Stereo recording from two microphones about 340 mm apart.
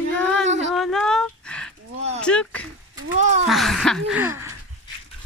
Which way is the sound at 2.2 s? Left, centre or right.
Centre.